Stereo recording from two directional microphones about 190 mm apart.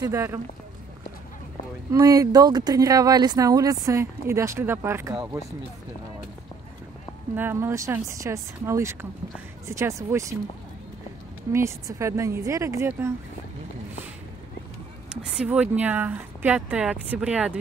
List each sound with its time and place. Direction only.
0.0 s speech: 15° right (ahead or behind)
1.9 s speech: 15° right (ahead or behind)
7.3 s speech: 10° right (ahead or behind)
11.5 s speech: 15° right (ahead or behind)
15.0 s speech: 5° right (ahead or behind)